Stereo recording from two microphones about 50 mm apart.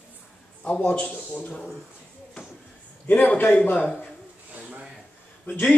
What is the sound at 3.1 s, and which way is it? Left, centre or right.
Speech, left.